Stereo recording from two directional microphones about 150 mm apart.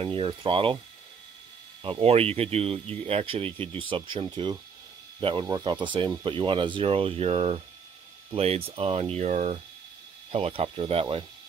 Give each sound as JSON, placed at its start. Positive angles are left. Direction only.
{"t": 0.0, "sound": "speech", "side_deg": -35}
{"t": 1.8, "sound": "speech", "side_deg": -40}